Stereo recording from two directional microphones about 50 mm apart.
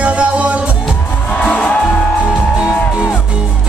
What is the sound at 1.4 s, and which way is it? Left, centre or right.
Music, left.